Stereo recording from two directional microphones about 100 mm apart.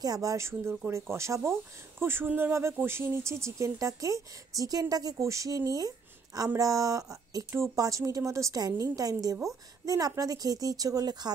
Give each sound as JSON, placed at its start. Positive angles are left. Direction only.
{"t": 0.0, "sound": "speech", "side_deg": -35}